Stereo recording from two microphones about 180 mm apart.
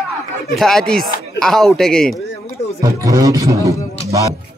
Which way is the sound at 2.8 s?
20° right (ahead or behind).